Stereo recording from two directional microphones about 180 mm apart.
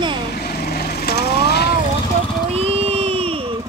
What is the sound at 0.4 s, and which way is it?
Vehicle, 60° left (ahead or behind).